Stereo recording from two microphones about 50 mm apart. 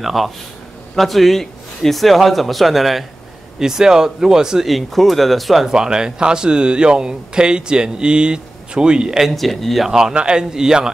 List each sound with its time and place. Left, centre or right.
0.0 s a man's voice: centre
4.6 s speech: centre
9.2 s a man's voice: centre
9.8 s speech: centre